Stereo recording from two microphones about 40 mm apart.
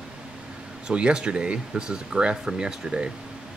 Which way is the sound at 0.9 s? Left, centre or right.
Right.